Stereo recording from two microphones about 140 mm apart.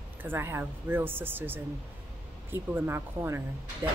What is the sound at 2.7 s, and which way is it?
Speech, 20° right (ahead or behind).